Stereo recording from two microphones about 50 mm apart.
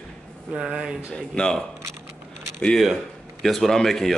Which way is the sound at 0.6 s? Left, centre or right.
Centre.